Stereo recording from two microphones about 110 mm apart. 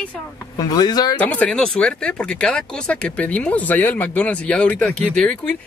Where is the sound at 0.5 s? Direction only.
35° left (ahead or behind).